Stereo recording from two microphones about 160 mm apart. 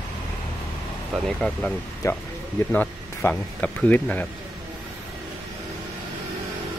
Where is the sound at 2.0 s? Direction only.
20° left (ahead or behind).